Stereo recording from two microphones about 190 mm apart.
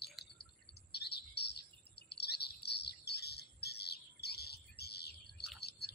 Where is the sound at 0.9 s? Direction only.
60° left (ahead or behind).